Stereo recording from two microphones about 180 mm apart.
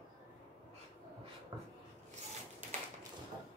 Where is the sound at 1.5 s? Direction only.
25° right (ahead or behind).